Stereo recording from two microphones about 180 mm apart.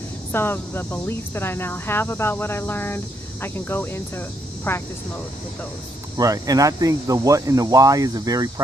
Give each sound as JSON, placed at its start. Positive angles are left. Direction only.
{"t": 0.3, "sound": "speech", "side_deg": 10}
{"t": 6.1, "sound": "speech", "side_deg": -20}